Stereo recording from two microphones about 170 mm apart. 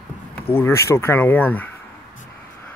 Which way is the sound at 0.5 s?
15° left (ahead or behind).